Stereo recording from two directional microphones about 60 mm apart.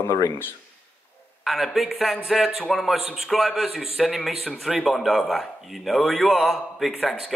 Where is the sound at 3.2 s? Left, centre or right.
Centre.